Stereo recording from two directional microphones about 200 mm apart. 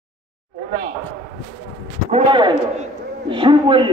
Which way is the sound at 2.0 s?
25° right (ahead or behind).